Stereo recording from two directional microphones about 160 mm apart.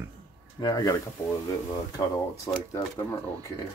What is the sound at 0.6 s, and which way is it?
Speech, 20° left (ahead or behind).